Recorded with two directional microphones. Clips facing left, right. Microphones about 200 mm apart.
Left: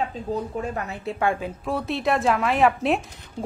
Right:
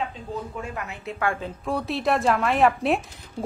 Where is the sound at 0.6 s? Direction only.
40° left (ahead or behind).